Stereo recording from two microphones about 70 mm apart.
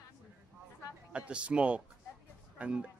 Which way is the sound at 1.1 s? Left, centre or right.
Centre.